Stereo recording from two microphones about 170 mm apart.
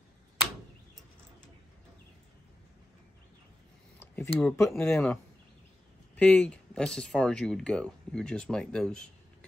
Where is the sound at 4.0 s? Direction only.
10° left (ahead or behind).